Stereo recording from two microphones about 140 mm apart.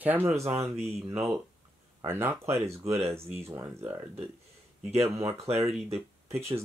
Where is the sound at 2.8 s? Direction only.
50° right (ahead or behind).